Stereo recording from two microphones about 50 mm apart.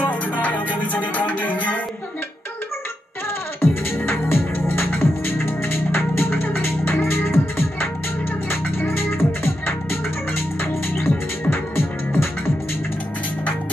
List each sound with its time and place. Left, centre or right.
0.0 s music: left
3.6 s music: left